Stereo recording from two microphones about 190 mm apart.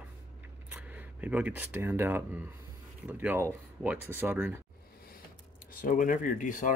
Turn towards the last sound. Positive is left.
turn(degrees=45)  # may be behind; listen again after turning